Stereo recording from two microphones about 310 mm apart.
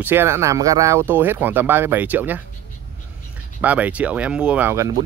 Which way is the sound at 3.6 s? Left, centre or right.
Centre.